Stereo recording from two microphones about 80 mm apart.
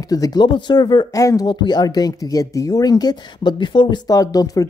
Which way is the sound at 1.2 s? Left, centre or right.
Left.